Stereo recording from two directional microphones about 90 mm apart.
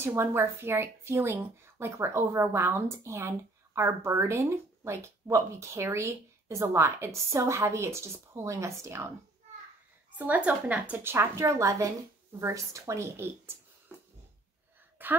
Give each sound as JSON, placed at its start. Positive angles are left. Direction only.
{"t": 0.0, "sound": "speech", "side_deg": -25}
{"t": 10.1, "sound": "a woman's voice", "side_deg": -15}
{"t": 11.1, "sound": "speech", "side_deg": -30}
{"t": 15.0, "sound": "a woman's voice", "side_deg": -20}